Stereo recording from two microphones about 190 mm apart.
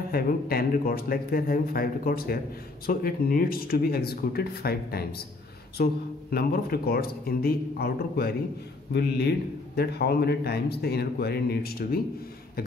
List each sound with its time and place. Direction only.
0.1 s speech: 50° left (ahead or behind)
6.3 s a man's voice: 55° left (ahead or behind)